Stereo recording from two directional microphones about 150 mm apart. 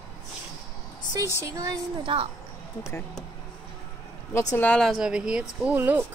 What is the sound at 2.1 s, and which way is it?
Speech, 35° right (ahead or behind).